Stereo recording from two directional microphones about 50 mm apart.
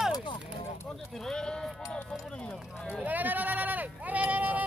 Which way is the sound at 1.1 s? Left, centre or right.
Centre.